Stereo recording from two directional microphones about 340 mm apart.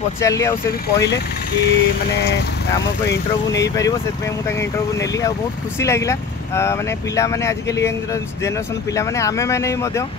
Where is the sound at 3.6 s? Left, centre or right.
Centre.